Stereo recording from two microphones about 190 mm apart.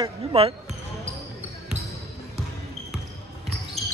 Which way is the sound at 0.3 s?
30° right (ahead or behind).